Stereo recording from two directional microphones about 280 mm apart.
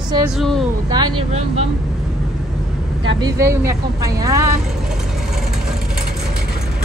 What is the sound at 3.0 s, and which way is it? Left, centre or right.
Speech, centre.